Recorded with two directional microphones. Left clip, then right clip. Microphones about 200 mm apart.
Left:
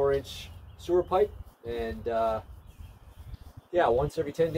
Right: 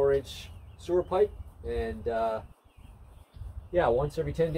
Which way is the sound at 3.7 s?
15° left (ahead or behind).